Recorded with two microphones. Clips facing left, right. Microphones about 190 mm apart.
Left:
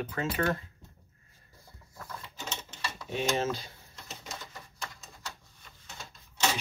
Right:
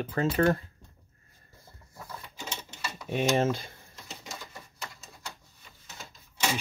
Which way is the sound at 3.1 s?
55° right (ahead or behind).